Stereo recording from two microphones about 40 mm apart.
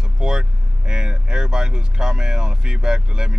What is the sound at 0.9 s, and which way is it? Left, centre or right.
Speech, right.